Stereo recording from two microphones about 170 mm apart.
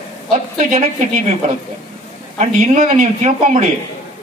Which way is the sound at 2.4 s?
45° right (ahead or behind).